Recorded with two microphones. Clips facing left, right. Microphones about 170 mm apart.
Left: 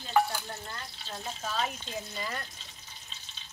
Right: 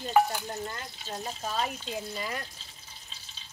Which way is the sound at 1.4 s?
5° right (ahead or behind).